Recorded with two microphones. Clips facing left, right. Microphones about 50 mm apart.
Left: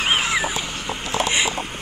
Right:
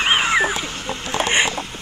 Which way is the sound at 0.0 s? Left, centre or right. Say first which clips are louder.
Right 4 dB; centre.